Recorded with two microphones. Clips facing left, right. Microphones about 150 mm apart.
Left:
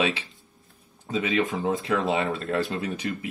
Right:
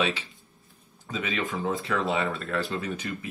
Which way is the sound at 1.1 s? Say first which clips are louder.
Left 6 dB; 20° left (ahead or behind).